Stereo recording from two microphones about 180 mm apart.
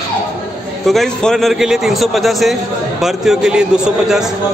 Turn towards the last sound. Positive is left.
turn(degrees=-5)  # may be behind; listen again after turning